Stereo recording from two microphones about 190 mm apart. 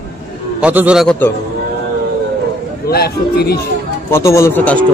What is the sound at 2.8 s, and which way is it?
Speech, 55° left (ahead or behind).